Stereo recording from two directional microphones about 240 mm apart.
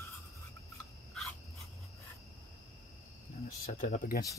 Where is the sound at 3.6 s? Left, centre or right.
Left.